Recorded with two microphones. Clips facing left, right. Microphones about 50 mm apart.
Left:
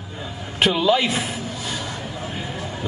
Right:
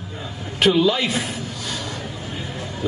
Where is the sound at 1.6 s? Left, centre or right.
Centre.